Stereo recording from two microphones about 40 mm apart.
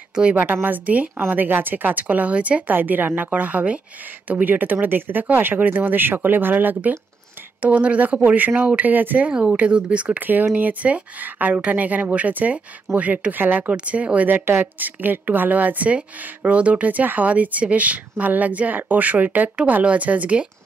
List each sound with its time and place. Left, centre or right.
0.1 s a woman's voice: right
0.5 s speech: right
2.3 s speech: right
2.7 s speech: right
3.3 s speech: right
7.6 s speech: right
9.3 s speech: right
13.8 s speech: right
14.3 s a woman's voice: right
14.8 s speech: right